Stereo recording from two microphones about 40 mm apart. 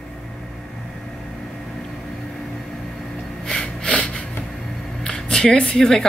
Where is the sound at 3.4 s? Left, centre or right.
Centre.